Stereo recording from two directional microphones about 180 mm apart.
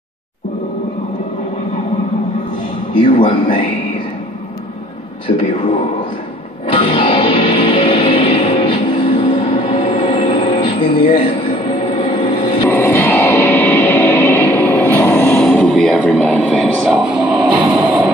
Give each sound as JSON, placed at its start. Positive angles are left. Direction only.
{"t": 2.9, "sound": "a man's voice", "side_deg": 25}
{"t": 6.7, "sound": "music", "side_deg": 30}
{"t": 12.6, "sound": "music", "side_deg": 15}
{"t": 15.4, "sound": "speech", "side_deg": 5}
{"t": 17.8, "sound": "music", "side_deg": -10}